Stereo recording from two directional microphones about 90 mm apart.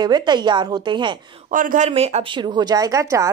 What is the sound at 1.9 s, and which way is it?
Speech, 70° right (ahead or behind).